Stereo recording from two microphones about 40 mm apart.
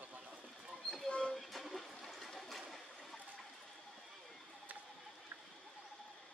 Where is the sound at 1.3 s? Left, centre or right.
Centre.